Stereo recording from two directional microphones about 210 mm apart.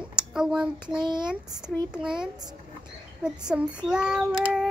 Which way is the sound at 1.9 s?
5° right (ahead or behind).